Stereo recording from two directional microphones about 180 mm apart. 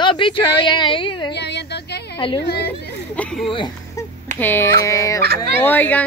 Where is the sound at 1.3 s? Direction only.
70° left (ahead or behind).